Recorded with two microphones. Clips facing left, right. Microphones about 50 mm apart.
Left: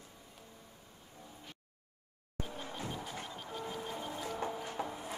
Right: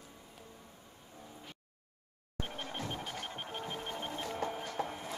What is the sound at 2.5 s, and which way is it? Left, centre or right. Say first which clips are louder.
Music: right 2 dB; right.